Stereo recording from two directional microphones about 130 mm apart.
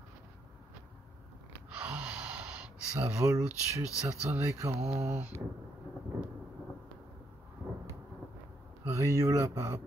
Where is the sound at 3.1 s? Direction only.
20° right (ahead or behind).